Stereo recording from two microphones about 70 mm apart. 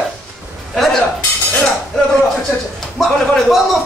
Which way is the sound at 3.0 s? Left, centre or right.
Centre.